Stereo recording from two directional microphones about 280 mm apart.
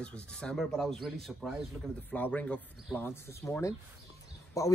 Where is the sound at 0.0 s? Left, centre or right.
Centre.